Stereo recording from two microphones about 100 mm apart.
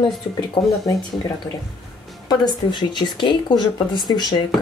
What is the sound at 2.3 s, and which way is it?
Speech, 50° left (ahead or behind).